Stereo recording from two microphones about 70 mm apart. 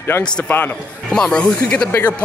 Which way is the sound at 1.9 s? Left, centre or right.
Left.